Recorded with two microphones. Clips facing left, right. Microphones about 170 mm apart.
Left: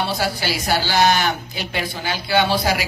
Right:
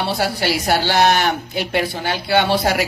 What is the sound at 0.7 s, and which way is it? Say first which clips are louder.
Speech: right 1 dB; 60° right (ahead or behind).